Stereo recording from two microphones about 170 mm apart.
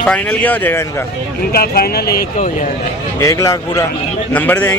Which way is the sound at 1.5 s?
65° left (ahead or behind).